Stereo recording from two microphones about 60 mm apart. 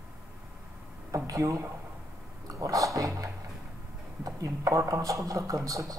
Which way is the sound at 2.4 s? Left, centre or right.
Right.